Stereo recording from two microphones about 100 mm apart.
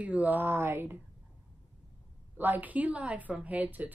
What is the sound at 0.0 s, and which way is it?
Speech, 15° right (ahead or behind).